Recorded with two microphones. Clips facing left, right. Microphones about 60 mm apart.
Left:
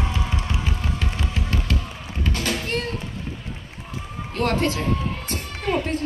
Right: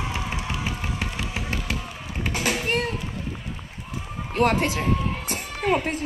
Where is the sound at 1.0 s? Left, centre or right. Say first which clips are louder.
Left 1 dB; centre.